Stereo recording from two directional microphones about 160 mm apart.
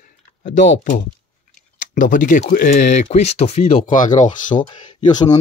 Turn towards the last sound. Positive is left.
turn(degrees=25)  # may be behind; listen again after turning